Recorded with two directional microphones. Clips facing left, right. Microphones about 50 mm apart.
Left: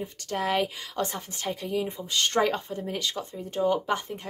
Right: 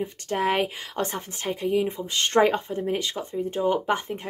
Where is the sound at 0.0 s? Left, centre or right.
Right.